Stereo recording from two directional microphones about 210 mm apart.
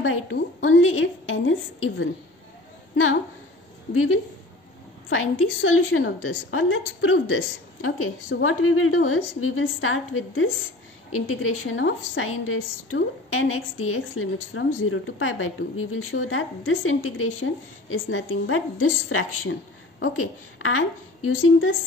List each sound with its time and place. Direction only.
0.0 s a woman's voice: 70° left (ahead or behind)
3.9 s a woman's voice: 80° left